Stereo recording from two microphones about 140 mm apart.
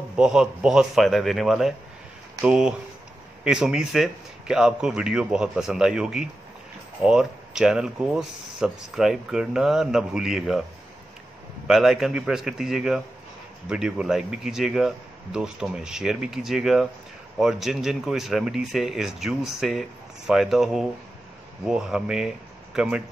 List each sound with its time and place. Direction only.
0.1 s speech: 5° right (ahead or behind)
11.6 s speech: 5° right (ahead or behind)